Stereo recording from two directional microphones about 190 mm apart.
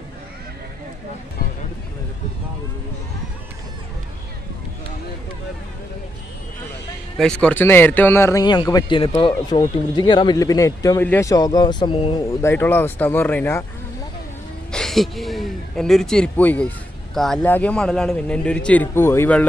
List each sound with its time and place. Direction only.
7.2 s a man's voice: 5° left (ahead or behind); by 12.2 s 25° left (ahead or behind)
12.4 s a man's voice: 10° left (ahead or behind)
14.7 s speech: centre (ahead or behind)